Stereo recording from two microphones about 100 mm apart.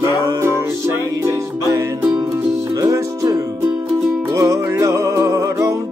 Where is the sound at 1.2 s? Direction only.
30° right (ahead or behind).